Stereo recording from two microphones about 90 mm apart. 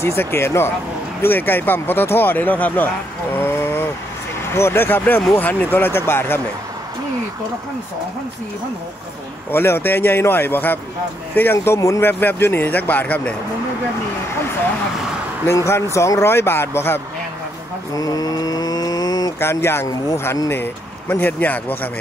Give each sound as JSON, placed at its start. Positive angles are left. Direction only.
{"t": 0.0, "sound": "speech", "side_deg": 30}
{"t": 3.3, "sound": "a sound", "side_deg": 20}
{"t": 4.6, "sound": "speech", "side_deg": 25}
{"t": 9.5, "sound": "speech", "side_deg": 25}
{"t": 15.4, "sound": "speech", "side_deg": 35}
{"t": 17.9, "sound": "mantra", "side_deg": 45}
{"t": 19.4, "sound": "speech", "side_deg": 25}